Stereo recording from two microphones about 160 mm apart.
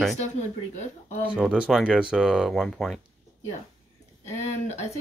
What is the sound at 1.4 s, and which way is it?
Speech, 5° right (ahead or behind).